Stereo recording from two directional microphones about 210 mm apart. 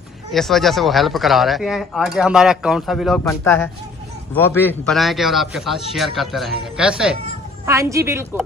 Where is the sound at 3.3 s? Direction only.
10° left (ahead or behind); by 7.1 s 5° right (ahead or behind).